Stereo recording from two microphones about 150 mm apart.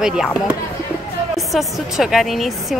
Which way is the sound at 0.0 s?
5° right (ahead or behind).